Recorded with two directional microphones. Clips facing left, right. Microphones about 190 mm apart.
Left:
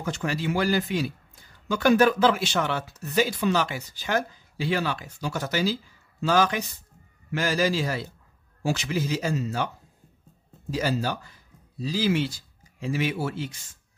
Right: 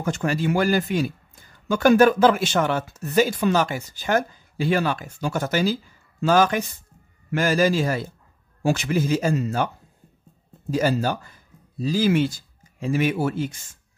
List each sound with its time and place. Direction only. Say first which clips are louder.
0.0 s a man's voice: right 5 dB; 50° right (ahead or behind)
10.7 s a man's voice: right 5 dB; 50° right (ahead or behind)